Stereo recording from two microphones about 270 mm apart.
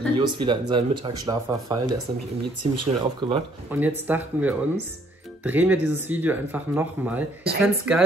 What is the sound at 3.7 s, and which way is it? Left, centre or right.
Speech, centre.